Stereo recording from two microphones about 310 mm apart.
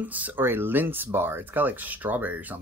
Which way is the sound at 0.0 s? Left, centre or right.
Centre.